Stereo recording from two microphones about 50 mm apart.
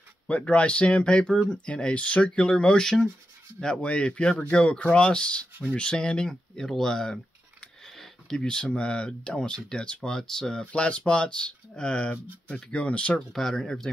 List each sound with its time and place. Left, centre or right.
0.3 s speech: left
3.8 s speech: left; by 7.2 s centre
7.6 s a sound: centre
8.5 s speech: left
10.6 s speech: left
13.3 s speech: centre